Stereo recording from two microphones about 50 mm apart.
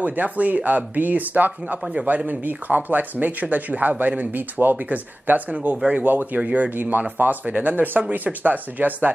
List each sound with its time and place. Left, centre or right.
0.0 s speech: right